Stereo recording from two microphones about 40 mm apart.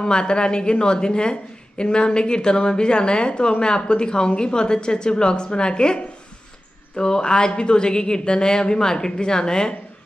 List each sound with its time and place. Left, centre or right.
0.0 s a woman's voice: left